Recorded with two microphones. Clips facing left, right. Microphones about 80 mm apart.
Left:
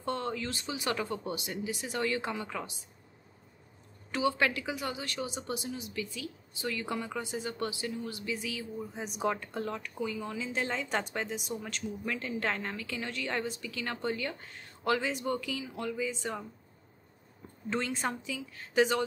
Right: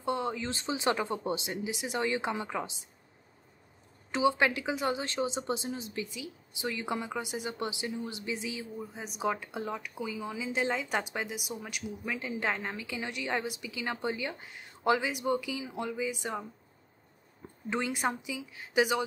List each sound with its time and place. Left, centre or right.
0.0 s a sound: centre
0.5 s speech: right
4.1 s speech: right
6.0 s speech: centre
8.7 s speech: centre
17.6 s speech: centre